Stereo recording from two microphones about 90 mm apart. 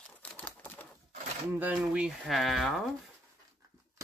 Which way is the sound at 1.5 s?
15° right (ahead or behind).